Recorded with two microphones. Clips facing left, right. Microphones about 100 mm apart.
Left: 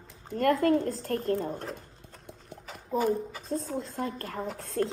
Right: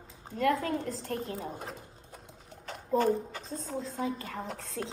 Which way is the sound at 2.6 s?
5° left (ahead or behind).